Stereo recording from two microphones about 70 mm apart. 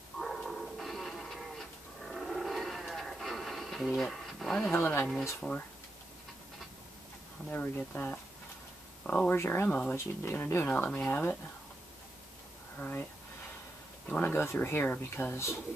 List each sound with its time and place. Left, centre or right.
0.2 s dog: centre
4.7 s speech: left
5.4 s speech: centre
7.5 s speech: left
9.3 s speech: left
10.7 s speech: centre
12.7 s speech: left
14.0 s speech: left
14.3 s speech: left
15.3 s speech: left